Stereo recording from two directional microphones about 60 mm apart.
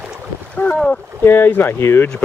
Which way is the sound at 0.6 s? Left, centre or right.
Left.